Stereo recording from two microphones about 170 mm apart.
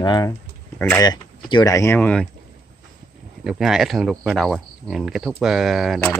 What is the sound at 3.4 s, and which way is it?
Speech, 5° right (ahead or behind).